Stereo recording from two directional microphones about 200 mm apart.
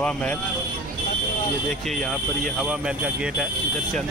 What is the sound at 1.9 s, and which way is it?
Speech, centre (ahead or behind).